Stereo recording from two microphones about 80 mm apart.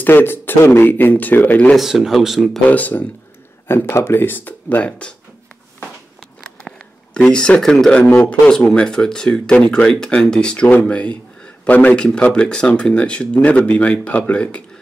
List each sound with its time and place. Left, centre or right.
0.0 s speech: left
1.8 s speech: centre
2.7 s speech: centre
3.6 s speech: left
7.2 s speech: centre